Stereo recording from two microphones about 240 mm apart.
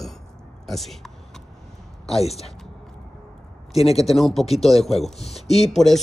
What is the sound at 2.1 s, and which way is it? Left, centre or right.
Speech, left.